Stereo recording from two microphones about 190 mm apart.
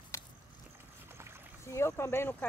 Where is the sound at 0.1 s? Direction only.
15° left (ahead or behind).